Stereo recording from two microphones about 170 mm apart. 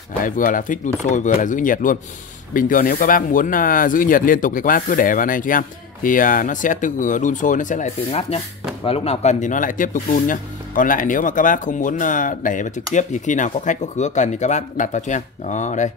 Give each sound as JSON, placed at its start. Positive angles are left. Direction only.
{"t": 0.2, "sound": "speech", "side_deg": 50}